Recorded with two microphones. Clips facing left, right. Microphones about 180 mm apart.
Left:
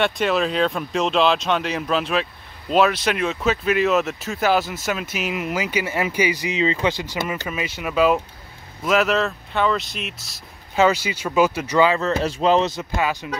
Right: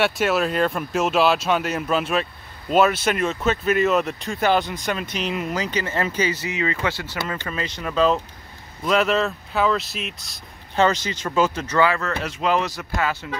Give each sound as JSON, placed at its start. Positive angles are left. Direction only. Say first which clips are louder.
{"t": 0.0, "sound": "speech", "louder": "even", "side_deg": -5}
{"t": 12.2, "sound": "speech", "louder": "left 5 dB", "side_deg": 30}